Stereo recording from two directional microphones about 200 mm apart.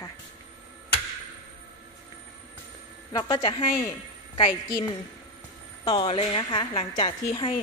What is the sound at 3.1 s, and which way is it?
Speech, 20° left (ahead or behind).